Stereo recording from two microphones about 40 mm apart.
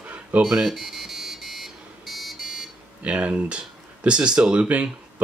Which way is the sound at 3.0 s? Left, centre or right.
Right.